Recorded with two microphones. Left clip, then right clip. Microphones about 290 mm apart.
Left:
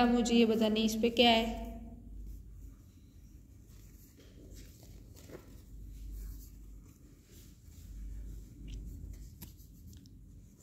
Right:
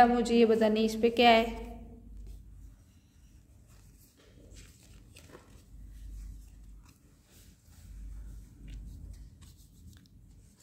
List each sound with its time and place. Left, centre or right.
0.0 s a woman's voice: right
5.3 s walk: centre